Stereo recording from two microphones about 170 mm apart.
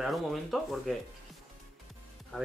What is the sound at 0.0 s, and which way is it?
Speech, centre (ahead or behind).